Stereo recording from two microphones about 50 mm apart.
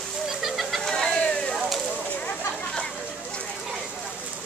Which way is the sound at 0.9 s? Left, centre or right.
Centre.